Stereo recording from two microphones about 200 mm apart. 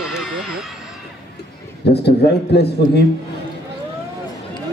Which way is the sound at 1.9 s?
55° left (ahead or behind).